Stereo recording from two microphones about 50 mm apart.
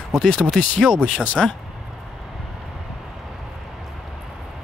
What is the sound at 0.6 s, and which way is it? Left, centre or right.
Speech, centre.